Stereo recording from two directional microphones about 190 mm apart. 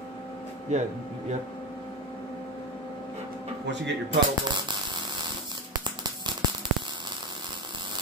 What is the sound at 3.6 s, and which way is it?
Speech, 65° right (ahead or behind).